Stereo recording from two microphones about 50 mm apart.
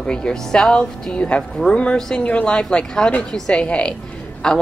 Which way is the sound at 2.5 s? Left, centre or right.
Centre.